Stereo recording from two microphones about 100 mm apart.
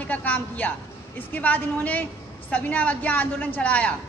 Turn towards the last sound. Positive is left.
turn(degrees=15)  # may be behind; listen again after turning